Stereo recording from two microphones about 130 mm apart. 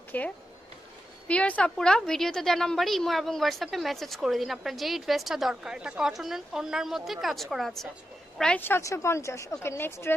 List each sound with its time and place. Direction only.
0.1 s a woman's voice: 10° left (ahead or behind)
8.6 s speech: 20° left (ahead or behind)